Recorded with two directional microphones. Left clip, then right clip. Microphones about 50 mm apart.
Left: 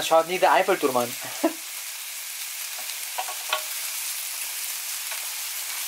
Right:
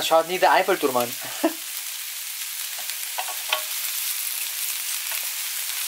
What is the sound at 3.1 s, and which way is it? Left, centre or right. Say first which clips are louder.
Stir: right 1 dB; right.